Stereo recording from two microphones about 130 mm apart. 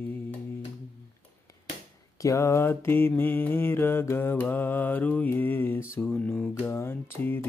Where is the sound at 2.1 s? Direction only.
25° left (ahead or behind).